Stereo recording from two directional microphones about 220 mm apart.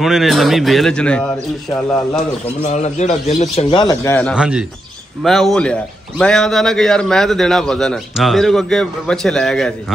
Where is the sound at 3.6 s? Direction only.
20° left (ahead or behind).